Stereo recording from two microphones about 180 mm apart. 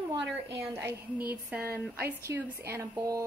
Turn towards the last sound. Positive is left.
turn(degrees=-15)  # may be behind; listen again after turning